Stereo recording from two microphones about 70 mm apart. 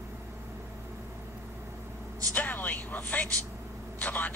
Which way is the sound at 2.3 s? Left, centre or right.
Left.